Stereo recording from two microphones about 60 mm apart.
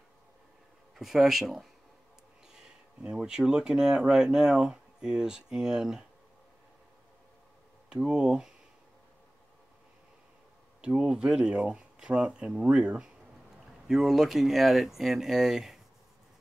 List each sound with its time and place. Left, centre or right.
0.9 s speech: centre
7.9 s speech: centre
11.0 s speech: centre
13.8 s speech: centre